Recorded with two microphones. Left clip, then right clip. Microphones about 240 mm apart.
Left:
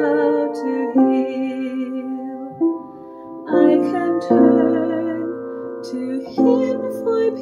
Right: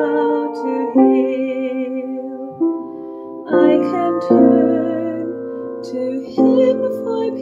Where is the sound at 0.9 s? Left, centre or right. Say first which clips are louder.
Right 4 dB; right.